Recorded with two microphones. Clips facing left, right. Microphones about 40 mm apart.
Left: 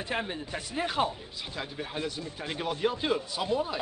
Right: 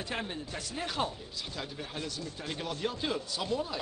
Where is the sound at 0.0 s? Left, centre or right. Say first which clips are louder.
Left 4 dB; centre.